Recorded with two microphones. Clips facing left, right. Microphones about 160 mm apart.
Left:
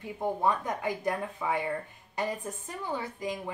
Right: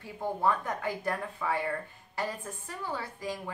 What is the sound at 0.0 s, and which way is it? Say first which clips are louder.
A woman's voice: left 1 dB; 20° left (ahead or behind).